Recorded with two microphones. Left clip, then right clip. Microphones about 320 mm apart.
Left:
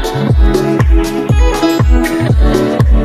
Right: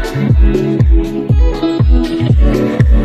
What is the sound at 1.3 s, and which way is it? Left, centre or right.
Music, left.